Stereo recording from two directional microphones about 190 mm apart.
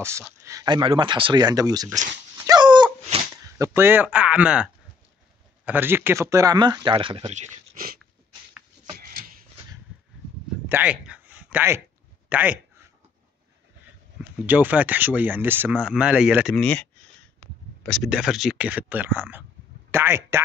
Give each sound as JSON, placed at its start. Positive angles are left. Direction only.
{"t": 0.0, "sound": "speech", "side_deg": -15}
{"t": 2.3, "sound": "dog", "side_deg": -20}
{"t": 5.7, "sound": "speech", "side_deg": -10}
{"t": 8.9, "sound": "a sound", "side_deg": -50}
{"t": 10.7, "sound": "a sound", "side_deg": -5}
{"t": 12.3, "sound": "speech", "side_deg": -10}
{"t": 14.4, "sound": "speech", "side_deg": -10}
{"t": 16.5, "sound": "speech", "side_deg": 5}